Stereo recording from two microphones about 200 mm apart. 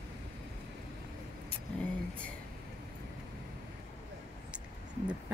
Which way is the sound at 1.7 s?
5° left (ahead or behind).